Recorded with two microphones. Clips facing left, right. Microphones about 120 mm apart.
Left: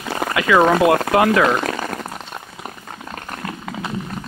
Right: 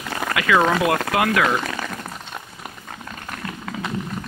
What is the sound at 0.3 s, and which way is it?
Speech, 25° left (ahead or behind).